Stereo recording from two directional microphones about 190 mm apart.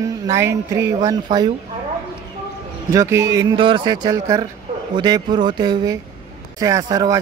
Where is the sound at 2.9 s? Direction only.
15° right (ahead or behind).